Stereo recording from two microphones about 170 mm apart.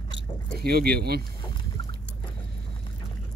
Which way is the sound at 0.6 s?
65° right (ahead or behind).